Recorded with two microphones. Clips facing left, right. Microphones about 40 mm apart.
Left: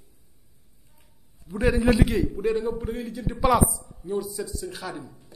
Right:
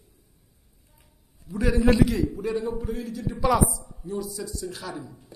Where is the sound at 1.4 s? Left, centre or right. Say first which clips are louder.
Left 1 dB; left.